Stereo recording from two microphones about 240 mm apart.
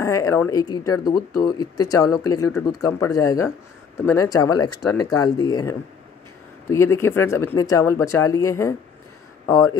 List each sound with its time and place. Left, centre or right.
0.0 s speech: centre